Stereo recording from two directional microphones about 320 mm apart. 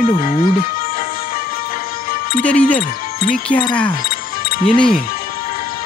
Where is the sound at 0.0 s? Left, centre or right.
Left.